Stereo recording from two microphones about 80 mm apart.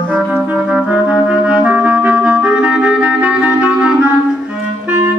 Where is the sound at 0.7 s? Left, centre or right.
Centre.